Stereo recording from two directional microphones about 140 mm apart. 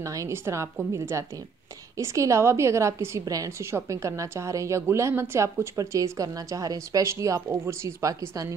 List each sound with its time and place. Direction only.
0.0 s a woman's voice: 20° right (ahead or behind)